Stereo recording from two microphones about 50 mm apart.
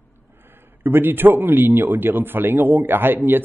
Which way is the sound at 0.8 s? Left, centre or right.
Right.